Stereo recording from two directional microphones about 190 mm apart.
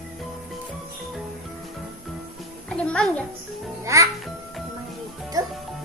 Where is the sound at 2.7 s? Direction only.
5° left (ahead or behind).